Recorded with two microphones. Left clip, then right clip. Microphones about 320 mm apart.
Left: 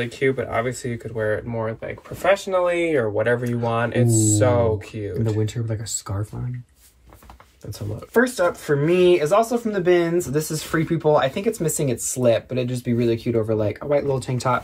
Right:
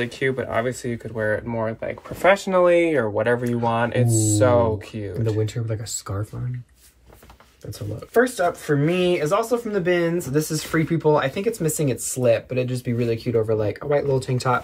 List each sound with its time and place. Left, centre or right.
0.0 s speech: centre
5.4 s speech: centre
8.1 s speech: centre